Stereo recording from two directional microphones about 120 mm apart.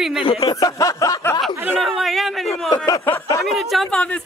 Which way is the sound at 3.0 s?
15° left (ahead or behind).